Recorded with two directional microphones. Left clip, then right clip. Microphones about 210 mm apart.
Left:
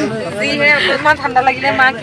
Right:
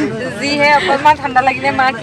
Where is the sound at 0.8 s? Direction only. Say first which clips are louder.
Right 1 dB; 15° right (ahead or behind).